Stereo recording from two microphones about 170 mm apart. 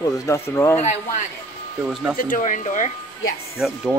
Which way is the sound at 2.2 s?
50° left (ahead or behind).